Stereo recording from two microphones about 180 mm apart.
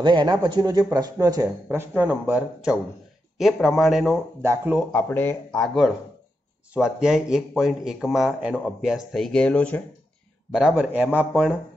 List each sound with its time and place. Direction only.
0.0 s speech: 25° right (ahead or behind); by 4.8 s 10° right (ahead or behind)
4.9 s speech: 10° left (ahead or behind)
10.5 s speech: 5° right (ahead or behind)